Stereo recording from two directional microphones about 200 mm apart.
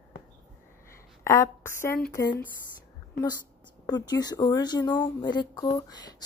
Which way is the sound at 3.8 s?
20° left (ahead or behind).